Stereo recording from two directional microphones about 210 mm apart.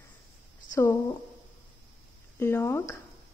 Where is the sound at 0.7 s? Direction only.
15° left (ahead or behind).